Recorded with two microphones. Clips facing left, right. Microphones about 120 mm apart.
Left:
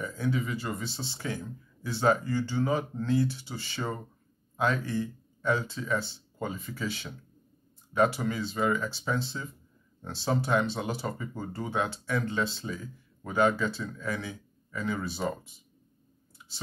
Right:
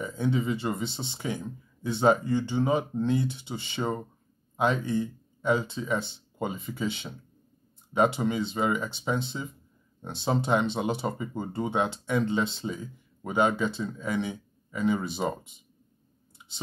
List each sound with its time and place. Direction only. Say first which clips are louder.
0.0 s speech: right 3 dB; 25° right (ahead or behind)
16.4 s clicking: even; 20° right (ahead or behind)